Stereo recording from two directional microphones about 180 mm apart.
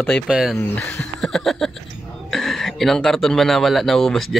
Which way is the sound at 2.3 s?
Centre (ahead or behind).